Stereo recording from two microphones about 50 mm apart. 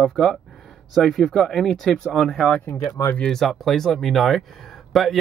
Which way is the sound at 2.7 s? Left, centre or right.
Left.